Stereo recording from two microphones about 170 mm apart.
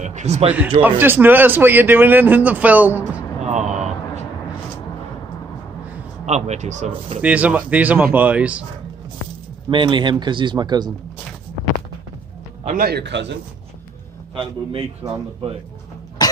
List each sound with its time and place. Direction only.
0.0 s speech: 40° right (ahead or behind)
0.8 s a man's voice: 10° right (ahead or behind)
3.0 s a sound: 45° right (ahead or behind)
6.2 s speech: 40° right (ahead or behind)
7.2 s a man's voice: 10° right (ahead or behind)
9.7 s speech: 30° right (ahead or behind)
12.6 s speech: 60° right (ahead or behind); by 13.3 s 90° right
14.3 s speech: 30° right (ahead or behind)
16.2 s cough: 25° left (ahead or behind)